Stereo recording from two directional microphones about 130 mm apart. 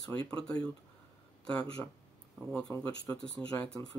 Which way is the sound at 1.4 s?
5° left (ahead or behind).